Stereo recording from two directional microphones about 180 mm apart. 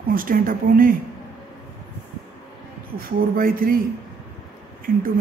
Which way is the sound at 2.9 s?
55° right (ahead or behind).